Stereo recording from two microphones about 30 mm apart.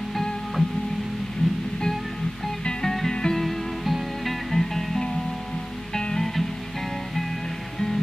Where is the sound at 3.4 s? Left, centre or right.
Centre.